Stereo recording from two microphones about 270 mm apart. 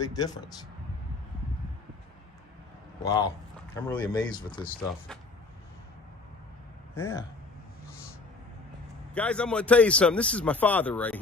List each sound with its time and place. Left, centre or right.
0.0 s speech: centre
3.0 s speech: centre
4.8 s a man's voice: centre
9.1 s a man's voice: centre